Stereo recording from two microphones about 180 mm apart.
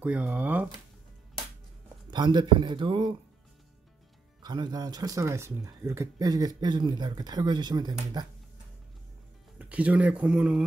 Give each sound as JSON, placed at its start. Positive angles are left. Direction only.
{"t": 0.0, "sound": "speech", "side_deg": -5}
{"t": 2.0, "sound": "speech", "side_deg": -25}
{"t": 4.4, "sound": "speech", "side_deg": -20}
{"t": 9.6, "sound": "speech", "side_deg": -10}